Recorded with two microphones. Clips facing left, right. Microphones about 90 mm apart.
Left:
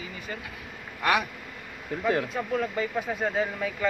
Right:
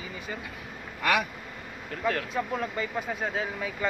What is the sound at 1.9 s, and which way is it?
Speech, 15° left (ahead or behind).